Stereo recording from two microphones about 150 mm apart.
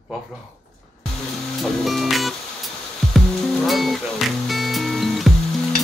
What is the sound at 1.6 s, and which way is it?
Music, centre (ahead or behind).